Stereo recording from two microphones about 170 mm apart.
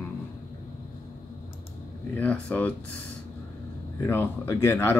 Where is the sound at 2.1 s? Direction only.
10° left (ahead or behind).